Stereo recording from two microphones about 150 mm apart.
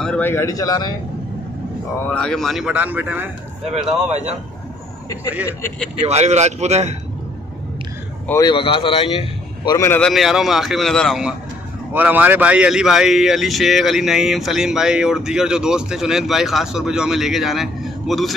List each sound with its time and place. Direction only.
0.0 s a man's voice: 10° left (ahead or behind); by 0.9 s 25° left (ahead or behind)
2.0 s speech: 5° left (ahead or behind); by 3.3 s 10° right (ahead or behind)
4.1 s speech: 50° right (ahead or behind)
5.9 s speech: 45° right (ahead or behind)
8.4 s speech: 35° left (ahead or behind)
9.8 s speech: 15° left (ahead or behind)
10.0 s speech: centre (ahead or behind)
11.9 s speech: 10° right (ahead or behind)